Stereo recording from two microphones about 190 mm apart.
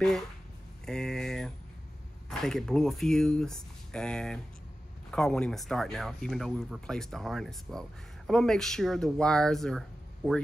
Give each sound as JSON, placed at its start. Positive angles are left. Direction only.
{"t": 0.8, "sound": "speech", "side_deg": 5}